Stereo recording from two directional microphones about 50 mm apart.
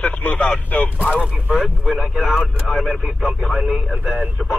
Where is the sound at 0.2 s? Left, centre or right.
Left.